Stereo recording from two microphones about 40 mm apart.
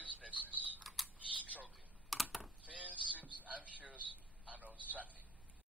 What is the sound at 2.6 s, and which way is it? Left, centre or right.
A man's voice, right.